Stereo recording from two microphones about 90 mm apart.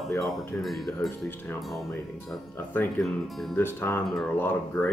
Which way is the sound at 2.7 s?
20° left (ahead or behind).